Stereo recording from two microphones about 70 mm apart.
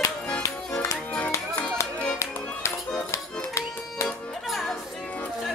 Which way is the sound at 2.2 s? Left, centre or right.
Left.